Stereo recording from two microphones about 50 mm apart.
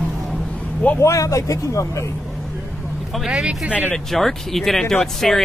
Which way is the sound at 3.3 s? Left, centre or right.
Centre.